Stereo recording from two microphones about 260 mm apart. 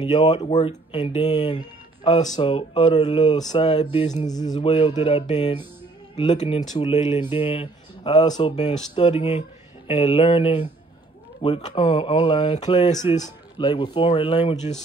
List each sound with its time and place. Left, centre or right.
0.0 s speech: centre